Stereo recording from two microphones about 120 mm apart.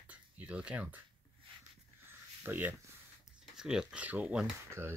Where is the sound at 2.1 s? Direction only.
15° right (ahead or behind).